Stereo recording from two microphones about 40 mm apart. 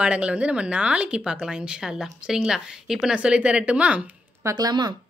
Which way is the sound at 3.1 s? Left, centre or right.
Right.